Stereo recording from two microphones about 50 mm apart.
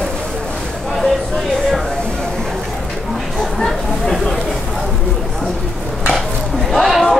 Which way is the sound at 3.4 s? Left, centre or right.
Centre.